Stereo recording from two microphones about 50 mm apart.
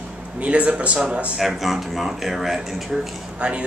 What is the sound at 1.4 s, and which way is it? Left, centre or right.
Speech, centre.